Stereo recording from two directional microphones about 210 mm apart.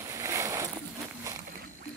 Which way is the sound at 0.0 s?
15° right (ahead or behind).